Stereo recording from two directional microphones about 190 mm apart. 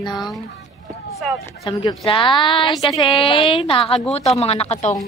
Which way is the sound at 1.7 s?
25° left (ahead or behind).